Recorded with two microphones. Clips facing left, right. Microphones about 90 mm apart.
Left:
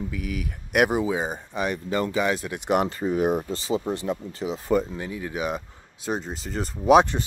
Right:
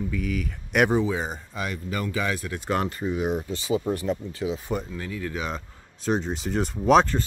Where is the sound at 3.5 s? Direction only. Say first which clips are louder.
Even; 35° left (ahead or behind).